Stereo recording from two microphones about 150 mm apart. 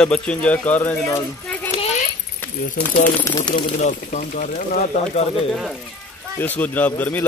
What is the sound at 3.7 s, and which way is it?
Speech, 55° left (ahead or behind).